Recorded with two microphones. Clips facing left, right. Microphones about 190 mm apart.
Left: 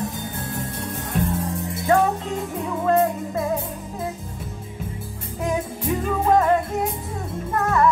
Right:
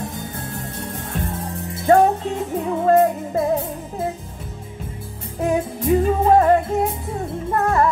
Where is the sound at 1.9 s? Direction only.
35° right (ahead or behind).